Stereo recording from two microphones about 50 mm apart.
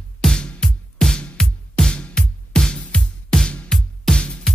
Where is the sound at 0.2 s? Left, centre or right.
Centre.